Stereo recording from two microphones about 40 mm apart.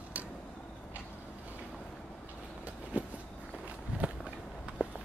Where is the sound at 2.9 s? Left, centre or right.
Right.